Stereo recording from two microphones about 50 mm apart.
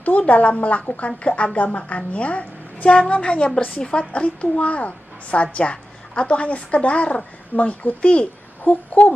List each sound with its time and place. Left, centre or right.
0.0 s a woman's voice: left